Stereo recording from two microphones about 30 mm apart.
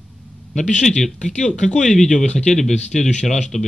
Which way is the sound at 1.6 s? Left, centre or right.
Centre.